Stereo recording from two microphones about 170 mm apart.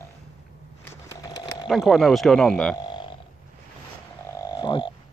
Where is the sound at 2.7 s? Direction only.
25° left (ahead or behind).